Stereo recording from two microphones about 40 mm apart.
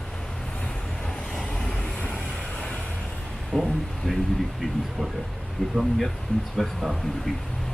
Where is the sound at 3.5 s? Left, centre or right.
Right.